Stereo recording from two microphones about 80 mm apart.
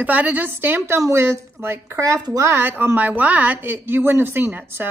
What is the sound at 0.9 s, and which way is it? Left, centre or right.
A woman's voice, right.